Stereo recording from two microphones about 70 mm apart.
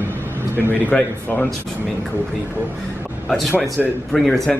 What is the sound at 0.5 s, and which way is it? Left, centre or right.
Speech, right.